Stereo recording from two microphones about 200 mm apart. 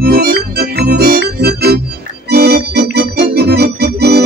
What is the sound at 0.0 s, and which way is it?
Organ, 50° right (ahead or behind).